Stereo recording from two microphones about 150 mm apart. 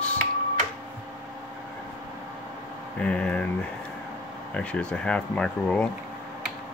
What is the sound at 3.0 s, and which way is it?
Speech, 5° left (ahead or behind).